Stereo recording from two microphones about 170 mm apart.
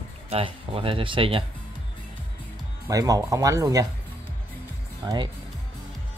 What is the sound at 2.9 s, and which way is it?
Speech, 20° right (ahead or behind).